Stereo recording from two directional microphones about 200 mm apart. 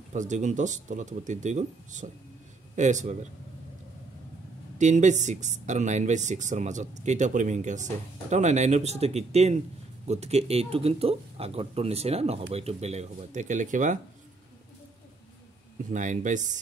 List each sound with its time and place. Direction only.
0.1 s speech: 40° right (ahead or behind)
4.7 s speech: 35° right (ahead or behind)
15.9 s speech: 40° right (ahead or behind)